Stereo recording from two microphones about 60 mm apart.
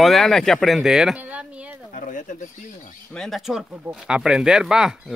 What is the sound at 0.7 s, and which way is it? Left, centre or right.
Speech, centre.